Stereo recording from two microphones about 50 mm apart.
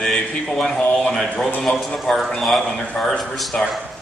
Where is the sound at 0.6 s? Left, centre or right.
Centre.